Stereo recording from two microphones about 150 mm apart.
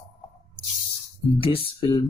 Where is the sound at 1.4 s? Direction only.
35° left (ahead or behind).